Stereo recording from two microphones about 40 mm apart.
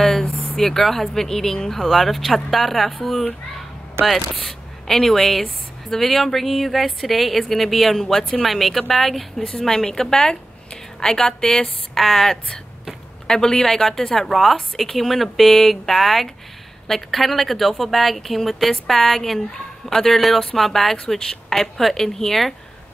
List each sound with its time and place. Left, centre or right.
0.0 s a woman's voice: centre
4.0 s speech: right
4.5 s a woman's voice: centre
9.4 s a woman's voice: left
9.7 s speech: centre
12.0 s a woman's voice: centre